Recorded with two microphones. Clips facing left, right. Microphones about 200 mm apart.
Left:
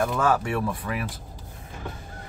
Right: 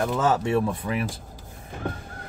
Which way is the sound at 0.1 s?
20° right (ahead or behind).